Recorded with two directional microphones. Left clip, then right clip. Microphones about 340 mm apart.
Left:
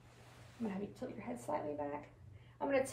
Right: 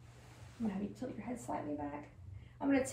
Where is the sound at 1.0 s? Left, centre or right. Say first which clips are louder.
Right 2 dB; centre.